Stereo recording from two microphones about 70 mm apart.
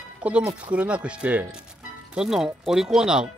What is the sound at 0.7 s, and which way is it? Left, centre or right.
Speech, centre.